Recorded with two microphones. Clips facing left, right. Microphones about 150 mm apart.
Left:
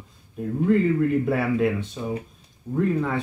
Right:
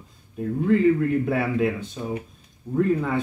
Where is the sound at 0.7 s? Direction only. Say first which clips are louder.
Right 1 dB; centre (ahead or behind).